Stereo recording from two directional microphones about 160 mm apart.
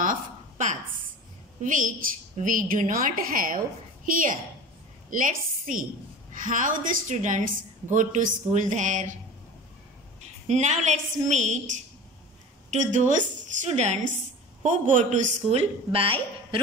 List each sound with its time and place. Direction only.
0.0 s a sound: 55° right (ahead or behind)
1.6 s a woman's voice: 55° right (ahead or behind)
10.4 s a woman's voice: 45° right (ahead or behind)
12.7 s a woman's voice: 50° right (ahead or behind); by 16.6 s 35° right (ahead or behind)